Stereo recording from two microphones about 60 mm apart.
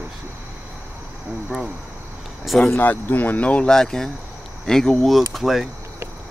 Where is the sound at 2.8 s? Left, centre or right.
Left.